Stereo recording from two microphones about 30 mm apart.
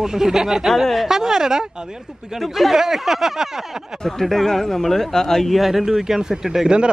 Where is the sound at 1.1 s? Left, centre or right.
Centre.